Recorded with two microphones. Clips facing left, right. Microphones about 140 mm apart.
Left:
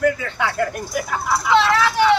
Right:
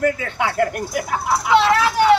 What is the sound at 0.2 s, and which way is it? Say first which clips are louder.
Speech: right 2 dB; 15° right (ahead or behind).